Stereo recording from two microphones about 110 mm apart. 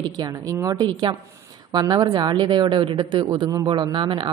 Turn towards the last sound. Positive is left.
turn(degrees=-45)  # may be behind; listen again after turning